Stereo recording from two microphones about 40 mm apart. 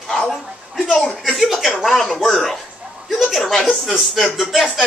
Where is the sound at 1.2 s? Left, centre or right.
Centre.